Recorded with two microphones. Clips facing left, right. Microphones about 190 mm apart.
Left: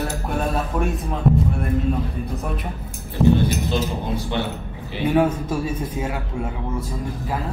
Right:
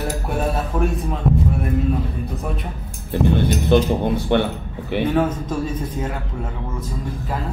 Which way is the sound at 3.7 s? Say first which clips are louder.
Right 7 dB; 60° right (ahead or behind).